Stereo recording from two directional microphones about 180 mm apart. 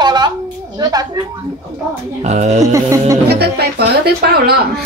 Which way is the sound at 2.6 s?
20° right (ahead or behind).